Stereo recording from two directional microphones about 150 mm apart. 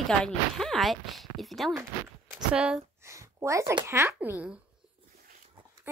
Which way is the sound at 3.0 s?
20° right (ahead or behind).